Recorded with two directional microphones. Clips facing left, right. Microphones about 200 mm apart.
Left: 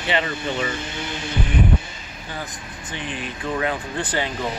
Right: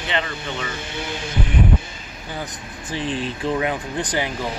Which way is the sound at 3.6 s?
15° right (ahead or behind).